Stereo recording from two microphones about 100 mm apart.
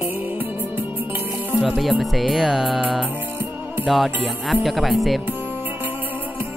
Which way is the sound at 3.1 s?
20° right (ahead or behind).